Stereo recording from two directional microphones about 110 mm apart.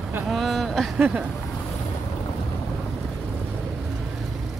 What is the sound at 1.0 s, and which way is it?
Speech, 10° right (ahead or behind).